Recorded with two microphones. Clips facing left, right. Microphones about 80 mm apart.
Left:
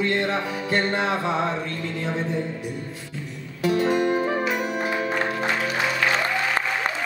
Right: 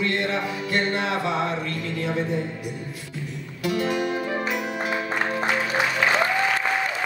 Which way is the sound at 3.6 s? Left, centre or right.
Left.